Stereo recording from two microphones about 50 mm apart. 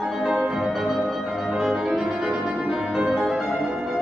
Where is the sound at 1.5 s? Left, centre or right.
Centre.